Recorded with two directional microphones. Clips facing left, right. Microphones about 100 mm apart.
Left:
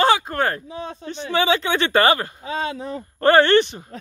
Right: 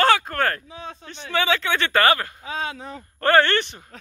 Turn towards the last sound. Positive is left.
turn(degrees=20)  # may be behind; listen again after turning